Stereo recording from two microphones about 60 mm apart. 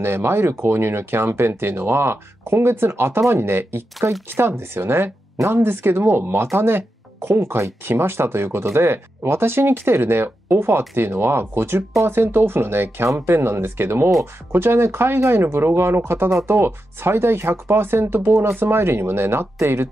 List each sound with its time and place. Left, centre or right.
0.0 s speech: right